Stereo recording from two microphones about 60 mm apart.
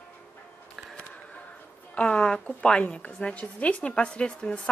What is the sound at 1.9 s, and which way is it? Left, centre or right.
A woman's voice, centre.